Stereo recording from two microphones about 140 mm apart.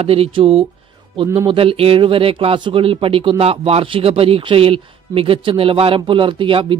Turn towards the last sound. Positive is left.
turn(degrees=-40)  # may be behind; listen again after turning